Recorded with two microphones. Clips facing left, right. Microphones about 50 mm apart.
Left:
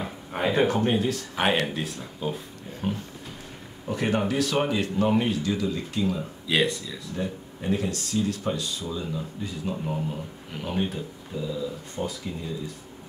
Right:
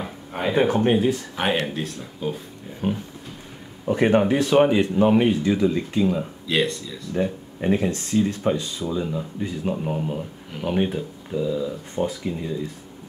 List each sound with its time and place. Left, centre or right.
0.0 s a sound: centre
0.9 s speech: centre
1.3 s speech: centre
2.8 s speech: centre
6.4 s speech: centre
7.2 s speech: right